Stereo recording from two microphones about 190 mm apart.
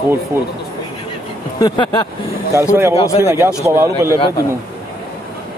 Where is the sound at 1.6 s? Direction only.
25° left (ahead or behind).